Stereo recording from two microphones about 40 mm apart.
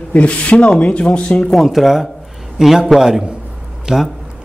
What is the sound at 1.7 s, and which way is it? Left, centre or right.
Speech, centre.